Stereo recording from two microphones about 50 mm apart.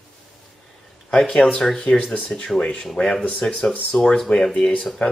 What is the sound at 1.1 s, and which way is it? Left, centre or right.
Speech, centre.